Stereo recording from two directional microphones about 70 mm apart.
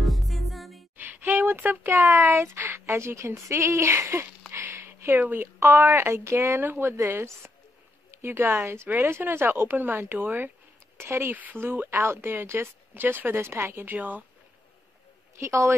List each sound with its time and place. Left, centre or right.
0.0 s music: centre
0.9 s a woman's voice: right
4.5 s a sound: right
5.2 s speech: right
5.6 s a woman's voice: right
6.6 s a woman's voice: right
15.3 s a woman's voice: right